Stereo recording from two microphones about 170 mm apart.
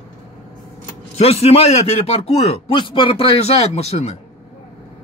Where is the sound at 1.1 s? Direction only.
35° left (ahead or behind).